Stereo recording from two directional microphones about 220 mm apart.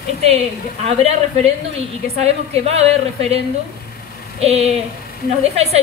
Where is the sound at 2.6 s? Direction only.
30° right (ahead or behind).